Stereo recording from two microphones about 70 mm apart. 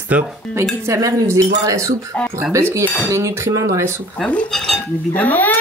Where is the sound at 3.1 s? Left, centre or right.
Right.